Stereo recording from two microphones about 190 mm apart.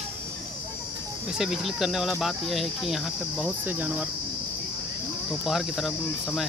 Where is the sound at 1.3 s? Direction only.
Centre (ahead or behind).